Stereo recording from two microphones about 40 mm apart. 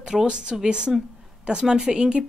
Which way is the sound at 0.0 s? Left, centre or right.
Centre.